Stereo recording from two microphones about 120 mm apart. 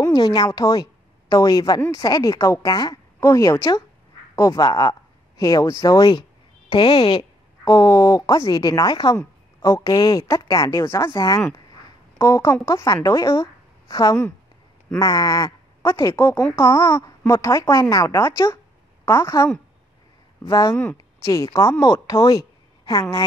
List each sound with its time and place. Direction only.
0.0 s a woman's voice: 35° left (ahead or behind)
6.7 s speech: 45° left (ahead or behind)
7.6 s a woman's voice: 30° left (ahead or behind)
20.4 s speech: 30° left (ahead or behind)
20.7 s speech: 10° left (ahead or behind)
21.2 s a woman's voice: 25° left (ahead or behind)